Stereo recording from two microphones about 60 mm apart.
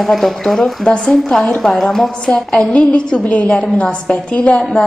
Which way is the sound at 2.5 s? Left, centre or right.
Centre.